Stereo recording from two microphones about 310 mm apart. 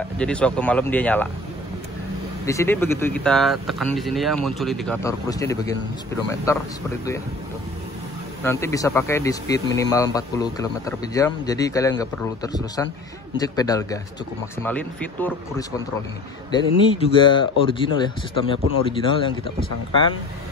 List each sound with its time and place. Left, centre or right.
0.2 s speech: centre
2.4 s speech: centre
8.5 s speech: centre
16.5 s speech: centre